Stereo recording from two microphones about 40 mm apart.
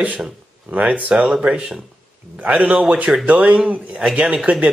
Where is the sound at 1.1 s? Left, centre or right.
Right.